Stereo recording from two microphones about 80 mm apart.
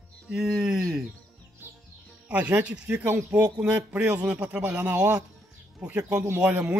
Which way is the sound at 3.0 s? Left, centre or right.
Right.